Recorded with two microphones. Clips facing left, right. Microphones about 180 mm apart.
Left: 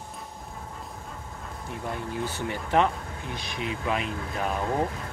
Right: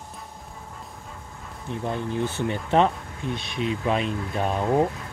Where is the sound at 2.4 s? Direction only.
25° right (ahead or behind).